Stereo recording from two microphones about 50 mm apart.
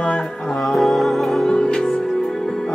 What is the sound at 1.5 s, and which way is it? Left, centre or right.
Music, centre.